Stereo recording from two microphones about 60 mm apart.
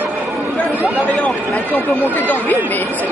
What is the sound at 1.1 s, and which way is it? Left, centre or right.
Speech, left.